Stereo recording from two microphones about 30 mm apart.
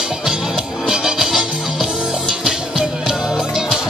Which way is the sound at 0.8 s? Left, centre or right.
Centre.